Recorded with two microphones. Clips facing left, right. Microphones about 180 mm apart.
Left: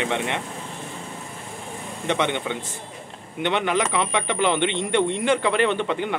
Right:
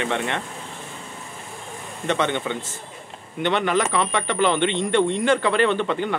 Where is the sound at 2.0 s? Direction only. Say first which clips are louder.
Right 1 dB; 15° left (ahead or behind).